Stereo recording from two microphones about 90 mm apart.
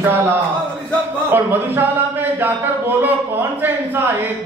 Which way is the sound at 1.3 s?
25° right (ahead or behind).